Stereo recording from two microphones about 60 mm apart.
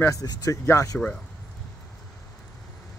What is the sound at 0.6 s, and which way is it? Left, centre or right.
Speech, left.